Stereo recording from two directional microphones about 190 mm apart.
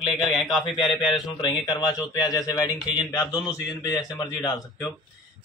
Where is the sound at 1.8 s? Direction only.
20° left (ahead or behind).